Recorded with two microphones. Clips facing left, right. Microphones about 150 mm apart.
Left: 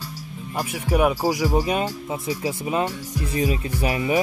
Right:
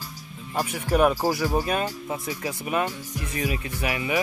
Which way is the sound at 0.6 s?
10° left (ahead or behind).